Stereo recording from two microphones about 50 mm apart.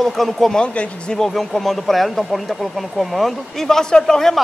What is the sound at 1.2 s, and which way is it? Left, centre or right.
Speech, centre.